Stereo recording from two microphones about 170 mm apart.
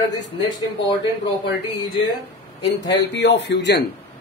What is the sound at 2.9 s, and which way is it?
Speech, 90° left.